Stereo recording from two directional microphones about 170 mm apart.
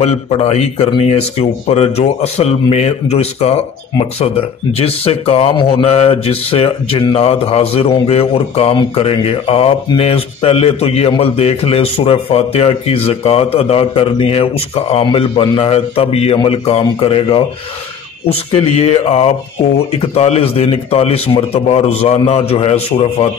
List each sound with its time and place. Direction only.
0.0 s speech: 35° left (ahead or behind)
4.7 s speech: 35° left (ahead or behind)